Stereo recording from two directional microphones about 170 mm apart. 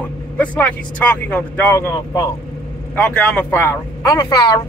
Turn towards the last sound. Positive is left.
turn(degrees=25)  # may be behind; listen again after turning